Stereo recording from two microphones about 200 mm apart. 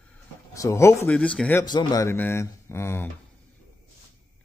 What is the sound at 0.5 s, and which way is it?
A man's voice, 15° left (ahead or behind).